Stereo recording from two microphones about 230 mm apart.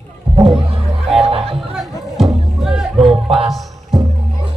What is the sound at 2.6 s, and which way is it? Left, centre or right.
Music, centre.